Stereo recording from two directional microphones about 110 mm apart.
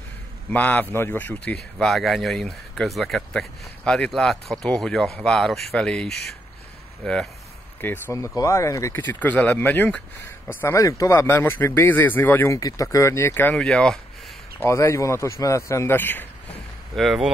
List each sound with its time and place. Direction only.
0.5 s speech: 15° left (ahead or behind)
7.8 s speech: 20° left (ahead or behind)
9.0 s speech: 15° left (ahead or behind)
10.6 s speech: 25° left (ahead or behind)
12.5 s speech: 30° left (ahead or behind); by 13.7 s 15° left (ahead or behind)
13.7 s speech: 5° left (ahead or behind)
14.6 s speech: 25° left (ahead or behind)
16.9 s speech: centre (ahead or behind)